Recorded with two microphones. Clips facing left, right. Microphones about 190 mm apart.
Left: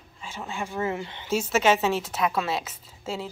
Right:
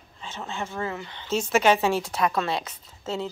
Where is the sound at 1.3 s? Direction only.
5° left (ahead or behind).